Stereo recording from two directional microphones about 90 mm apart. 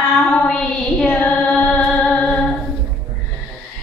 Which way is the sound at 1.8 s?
15° left (ahead or behind).